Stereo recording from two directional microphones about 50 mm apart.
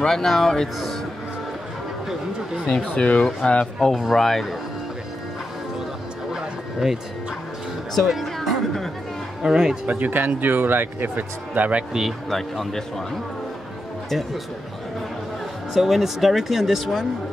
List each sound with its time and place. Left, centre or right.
0.0 s speech: centre
2.6 s speech: left
3.9 s speech: centre
6.3 s a sound: centre
7.9 s a sound: centre
9.4 s a man's voice: centre
9.8 s speech: right
12.3 s speech: centre
15.7 s speech: centre